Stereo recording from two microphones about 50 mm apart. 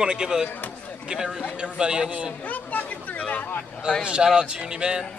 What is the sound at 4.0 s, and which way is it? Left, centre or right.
A man's voice, centre.